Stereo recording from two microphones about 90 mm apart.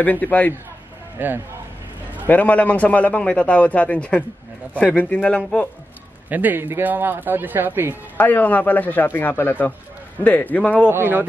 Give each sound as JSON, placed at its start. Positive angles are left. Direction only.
{"t": 0.0, "sound": "speech", "side_deg": 20}
{"t": 1.1, "sound": "speech", "side_deg": -20}
{"t": 2.2, "sound": "a man's voice", "side_deg": 15}
{"t": 6.2, "sound": "a man's voice", "side_deg": -20}
{"t": 8.2, "sound": "a man's voice", "side_deg": 20}
{"t": 10.9, "sound": "a man's voice", "side_deg": -25}